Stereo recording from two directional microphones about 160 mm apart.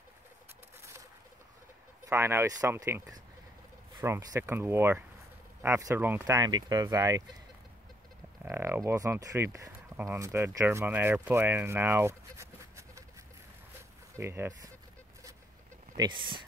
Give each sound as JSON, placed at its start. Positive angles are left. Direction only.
{"t": 2.0, "sound": "speech", "side_deg": -15}
{"t": 8.5, "sound": "speech", "side_deg": -15}
{"t": 14.1, "sound": "speech", "side_deg": -15}
{"t": 16.0, "sound": "speech", "side_deg": -30}